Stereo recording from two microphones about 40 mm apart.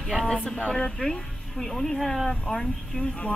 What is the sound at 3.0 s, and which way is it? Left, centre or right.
Speech, left.